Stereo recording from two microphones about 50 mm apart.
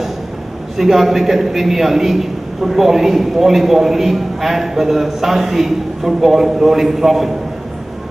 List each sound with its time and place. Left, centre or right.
0.7 s a man's voice: centre